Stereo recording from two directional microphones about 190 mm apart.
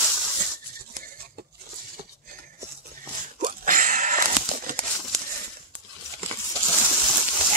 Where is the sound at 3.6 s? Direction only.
40° right (ahead or behind).